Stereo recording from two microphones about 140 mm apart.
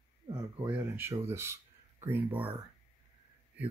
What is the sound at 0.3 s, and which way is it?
Speech, 10° right (ahead or behind).